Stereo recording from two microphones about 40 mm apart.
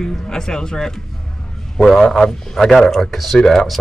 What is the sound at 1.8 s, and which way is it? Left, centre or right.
Speech, centre.